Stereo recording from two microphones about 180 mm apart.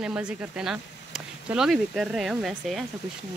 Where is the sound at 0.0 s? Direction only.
5° right (ahead or behind).